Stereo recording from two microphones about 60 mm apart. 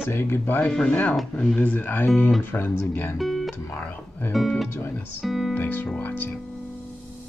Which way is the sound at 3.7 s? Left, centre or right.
Left.